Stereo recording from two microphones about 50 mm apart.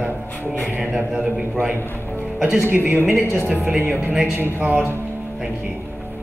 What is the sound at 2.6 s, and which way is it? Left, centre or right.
Speech, right.